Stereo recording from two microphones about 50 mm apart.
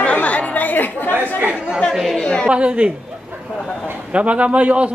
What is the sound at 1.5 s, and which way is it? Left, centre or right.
Chatter, right.